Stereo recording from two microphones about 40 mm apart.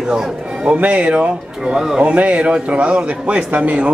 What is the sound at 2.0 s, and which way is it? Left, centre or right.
A man's voice, right.